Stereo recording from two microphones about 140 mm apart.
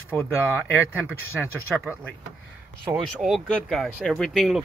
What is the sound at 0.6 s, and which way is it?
Speech, 10° right (ahead or behind).